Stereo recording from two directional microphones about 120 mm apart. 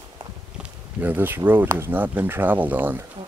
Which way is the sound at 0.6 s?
15° right (ahead or behind).